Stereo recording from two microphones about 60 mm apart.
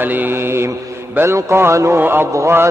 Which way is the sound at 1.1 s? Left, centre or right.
Right.